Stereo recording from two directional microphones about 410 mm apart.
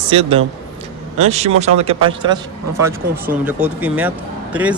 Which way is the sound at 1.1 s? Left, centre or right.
Centre.